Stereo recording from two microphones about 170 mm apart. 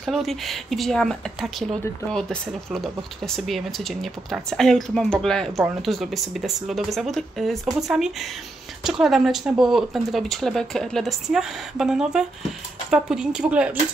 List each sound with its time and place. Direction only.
0.0 s speech: centre (ahead or behind)